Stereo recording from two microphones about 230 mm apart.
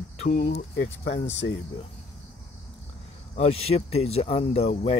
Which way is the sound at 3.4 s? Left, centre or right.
Left.